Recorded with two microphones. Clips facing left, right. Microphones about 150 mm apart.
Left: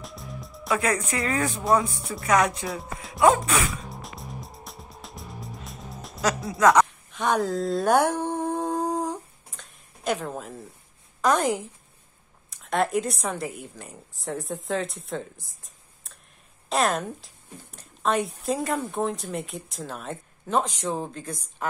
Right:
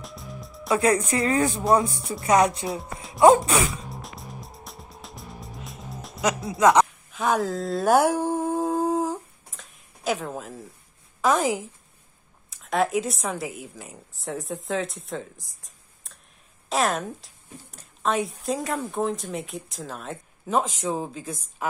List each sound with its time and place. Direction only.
0.0 s music: centre (ahead or behind)
0.7 s speech: 30° right (ahead or behind)
2.7 s music: centre (ahead or behind)
3.4 s speech: 30° right (ahead or behind)
3.8 s music: centre (ahead or behind)
6.5 s speech: 20° right (ahead or behind)
7.1 s a sound: centre (ahead or behind)
11.1 s a woman's voice: centre (ahead or behind)